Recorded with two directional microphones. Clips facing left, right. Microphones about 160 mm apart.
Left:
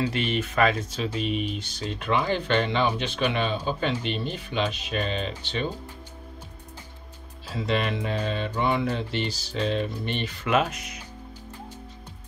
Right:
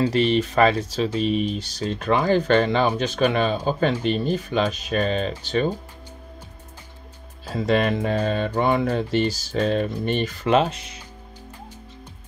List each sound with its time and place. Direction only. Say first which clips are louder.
0.0 s speech: right 7 dB; 35° right (ahead or behind)
7.4 s speech: right 6 dB; 45° right (ahead or behind)
10.5 s speech: right 4 dB; 30° right (ahead or behind)